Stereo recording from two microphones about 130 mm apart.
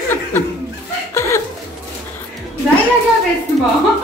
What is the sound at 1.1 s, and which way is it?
Chuckle, 20° left (ahead or behind).